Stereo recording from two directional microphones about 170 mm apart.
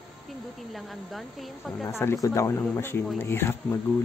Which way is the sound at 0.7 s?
Centre (ahead or behind).